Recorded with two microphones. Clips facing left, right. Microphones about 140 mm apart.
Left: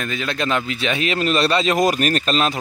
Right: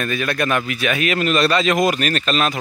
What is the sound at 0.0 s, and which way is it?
Speech, 20° left (ahead or behind).